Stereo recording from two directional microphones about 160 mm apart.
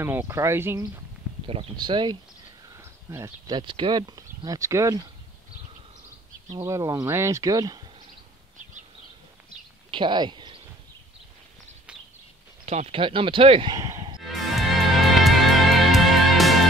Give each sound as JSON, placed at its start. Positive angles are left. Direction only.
{"t": 0.0, "sound": "speech", "side_deg": -15}
{"t": 1.5, "sound": "speech", "side_deg": -30}
{"t": 2.8, "sound": "speech", "side_deg": -15}
{"t": 6.5, "sound": "speech", "side_deg": -20}
{"t": 9.8, "sound": "speech", "side_deg": -30}
{"t": 12.6, "sound": "speech", "side_deg": -40}
{"t": 14.2, "sound": "music", "side_deg": 0}